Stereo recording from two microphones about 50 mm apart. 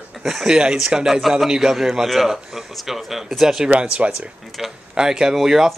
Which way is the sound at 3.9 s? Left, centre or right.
Right.